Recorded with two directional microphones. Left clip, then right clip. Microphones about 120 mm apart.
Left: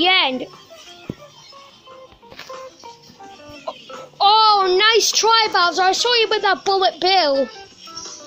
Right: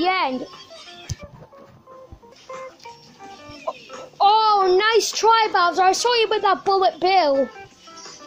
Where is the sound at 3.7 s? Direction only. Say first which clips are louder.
Right 1 dB; 25° right (ahead or behind).